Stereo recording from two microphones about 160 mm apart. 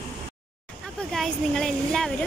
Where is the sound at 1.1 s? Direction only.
5° left (ahead or behind).